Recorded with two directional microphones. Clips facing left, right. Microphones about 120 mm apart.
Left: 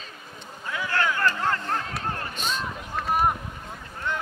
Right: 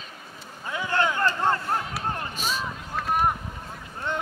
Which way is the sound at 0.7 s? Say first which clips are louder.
Right 1 dB; 20° right (ahead or behind).